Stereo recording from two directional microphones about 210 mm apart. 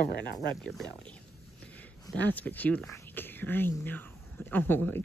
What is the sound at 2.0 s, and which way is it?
Speech, 10° left (ahead or behind).